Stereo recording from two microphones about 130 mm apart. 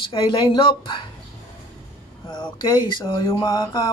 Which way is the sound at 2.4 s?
35° left (ahead or behind).